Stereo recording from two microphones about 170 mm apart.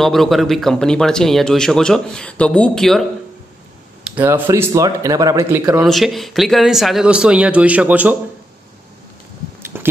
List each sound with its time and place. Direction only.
0.0 s speech: centre (ahead or behind)
4.2 s speech: 15° right (ahead or behind)
5.8 s speech: centre (ahead or behind)
9.7 s a sound: 15° right (ahead or behind)